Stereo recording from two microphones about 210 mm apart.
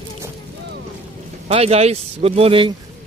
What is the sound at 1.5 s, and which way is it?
Speech, 30° right (ahead or behind).